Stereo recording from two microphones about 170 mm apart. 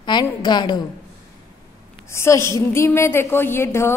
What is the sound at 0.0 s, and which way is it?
Speech, 25° left (ahead or behind).